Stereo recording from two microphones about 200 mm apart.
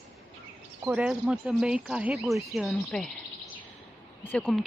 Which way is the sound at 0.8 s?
5° right (ahead or behind).